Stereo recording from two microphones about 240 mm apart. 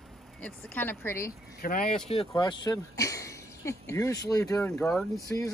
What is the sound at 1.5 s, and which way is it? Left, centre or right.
Speech, left.